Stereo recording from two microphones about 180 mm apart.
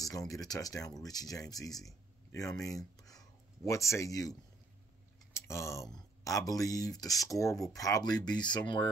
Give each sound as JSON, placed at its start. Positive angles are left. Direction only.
{"t": 0.3, "sound": "speech", "side_deg": 20}
{"t": 3.0, "sound": "a sound", "side_deg": 20}
{"t": 5.3, "sound": "speech", "side_deg": 15}